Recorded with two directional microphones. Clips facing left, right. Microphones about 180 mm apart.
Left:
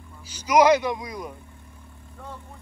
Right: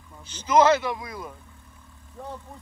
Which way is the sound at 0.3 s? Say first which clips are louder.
Left 1 dB; 10° left (ahead or behind).